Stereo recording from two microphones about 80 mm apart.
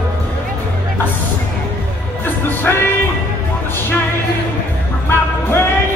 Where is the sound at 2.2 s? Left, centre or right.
Left.